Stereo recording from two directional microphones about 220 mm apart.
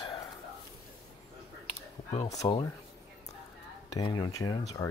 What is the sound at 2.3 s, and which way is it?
Speech, 25° left (ahead or behind).